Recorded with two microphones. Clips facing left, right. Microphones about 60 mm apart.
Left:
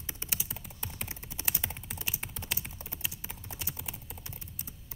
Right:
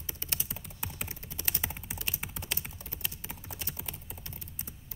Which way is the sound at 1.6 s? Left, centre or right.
Centre.